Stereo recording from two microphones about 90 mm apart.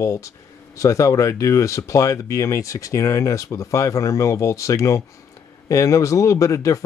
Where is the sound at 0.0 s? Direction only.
35° left (ahead or behind).